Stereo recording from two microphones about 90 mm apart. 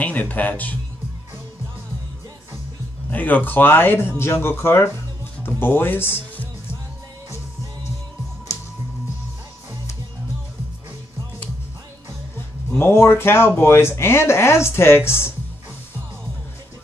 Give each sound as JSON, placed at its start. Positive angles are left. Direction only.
{"t": 0.0, "sound": "speech", "side_deg": 15}
{"t": 3.1, "sound": "speech", "side_deg": 20}
{"t": 5.6, "sound": "music", "side_deg": 20}
{"t": 12.6, "sound": "speech", "side_deg": 30}